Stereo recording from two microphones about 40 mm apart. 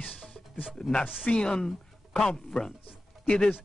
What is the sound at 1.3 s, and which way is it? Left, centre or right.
Speech, left.